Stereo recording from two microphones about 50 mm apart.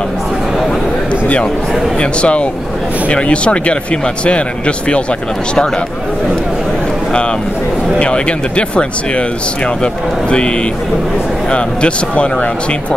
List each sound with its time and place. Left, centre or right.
2.0 s speech: left
8.0 s speech: left
11.5 s speech: left